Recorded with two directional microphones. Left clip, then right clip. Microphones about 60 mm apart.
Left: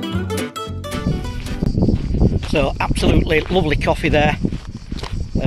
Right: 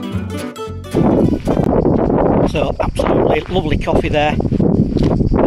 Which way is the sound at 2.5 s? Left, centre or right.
Centre.